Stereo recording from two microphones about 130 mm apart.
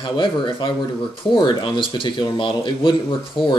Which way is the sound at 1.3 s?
40° left (ahead or behind).